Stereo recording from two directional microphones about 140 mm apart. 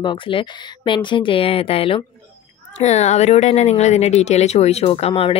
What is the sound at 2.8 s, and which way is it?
Speech, 55° left (ahead or behind).